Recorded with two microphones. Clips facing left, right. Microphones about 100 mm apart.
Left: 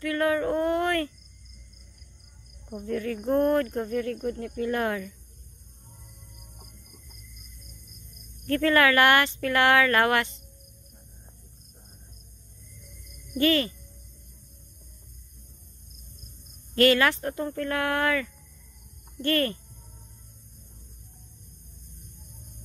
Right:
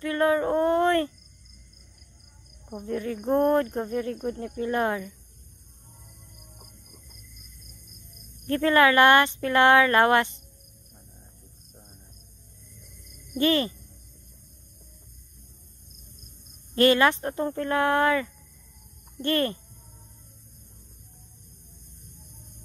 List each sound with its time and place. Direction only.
0.0 s a sound: 25° right (ahead or behind)
2.8 s speech: 20° right (ahead or behind)
8.5 s speech: 25° right (ahead or behind)
13.4 s speech: 25° right (ahead or behind)
16.7 s speech: 25° right (ahead or behind)